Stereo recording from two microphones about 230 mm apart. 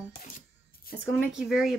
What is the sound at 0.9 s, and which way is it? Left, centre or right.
Speech, left.